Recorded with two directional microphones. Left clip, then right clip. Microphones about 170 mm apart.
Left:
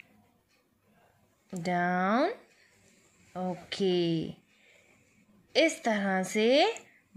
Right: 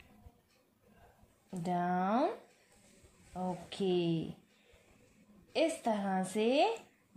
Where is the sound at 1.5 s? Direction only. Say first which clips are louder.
Left 5 dB; 50° left (ahead or behind).